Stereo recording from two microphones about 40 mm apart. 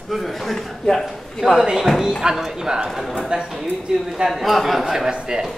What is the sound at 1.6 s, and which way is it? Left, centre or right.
Speech, centre.